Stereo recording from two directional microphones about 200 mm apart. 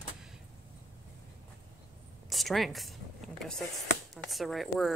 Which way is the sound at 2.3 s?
Centre (ahead or behind).